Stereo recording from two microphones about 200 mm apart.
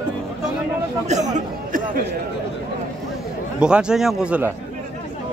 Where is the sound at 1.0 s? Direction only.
35° right (ahead or behind).